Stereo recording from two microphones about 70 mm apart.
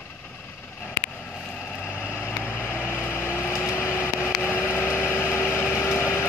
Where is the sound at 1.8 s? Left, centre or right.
Left.